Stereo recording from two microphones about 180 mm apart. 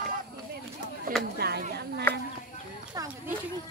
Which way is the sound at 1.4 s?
60° right (ahead or behind).